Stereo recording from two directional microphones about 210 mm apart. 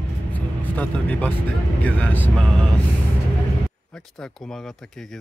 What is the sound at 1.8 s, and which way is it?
Speech, 5° left (ahead or behind).